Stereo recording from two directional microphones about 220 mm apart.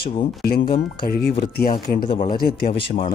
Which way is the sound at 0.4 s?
40° left (ahead or behind).